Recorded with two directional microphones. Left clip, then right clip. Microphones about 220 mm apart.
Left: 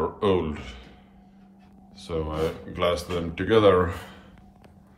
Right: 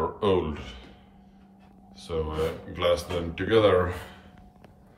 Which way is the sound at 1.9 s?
10° right (ahead or behind).